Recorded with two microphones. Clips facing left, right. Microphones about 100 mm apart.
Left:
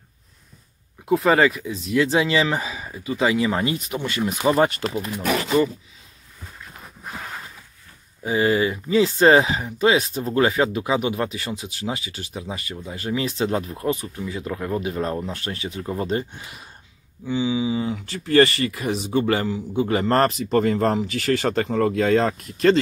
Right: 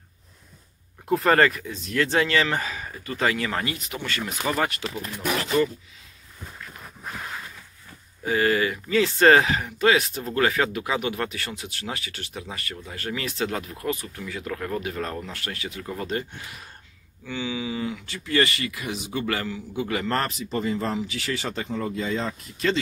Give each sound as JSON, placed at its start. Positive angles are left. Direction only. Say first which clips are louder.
{"t": 1.0, "sound": "speech", "louder": "left 2 dB", "side_deg": 5}
{"t": 5.0, "sound": "speech", "louder": "left 1 dB", "side_deg": 15}
{"t": 8.2, "sound": "speech", "louder": "left 2 dB", "side_deg": 20}
{"t": 17.9, "sound": "speech", "louder": "left 9 dB", "side_deg": 40}